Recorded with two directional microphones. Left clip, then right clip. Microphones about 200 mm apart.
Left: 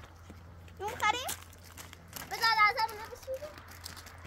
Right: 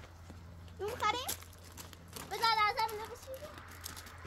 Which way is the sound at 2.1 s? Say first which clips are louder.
Left 2 dB; 25° left (ahead or behind).